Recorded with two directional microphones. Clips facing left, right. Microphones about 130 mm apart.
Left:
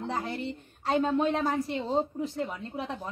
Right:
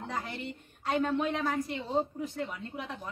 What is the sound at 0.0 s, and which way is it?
A woman's voice, 30° left (ahead or behind).